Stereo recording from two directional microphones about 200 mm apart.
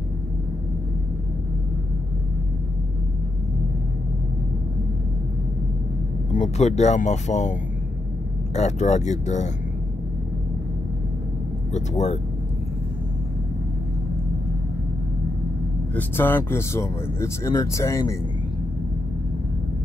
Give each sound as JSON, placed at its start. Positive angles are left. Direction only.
{"t": 6.3, "sound": "speech", "side_deg": 35}
{"t": 8.5, "sound": "speech", "side_deg": 35}
{"t": 15.9, "sound": "speech", "side_deg": 10}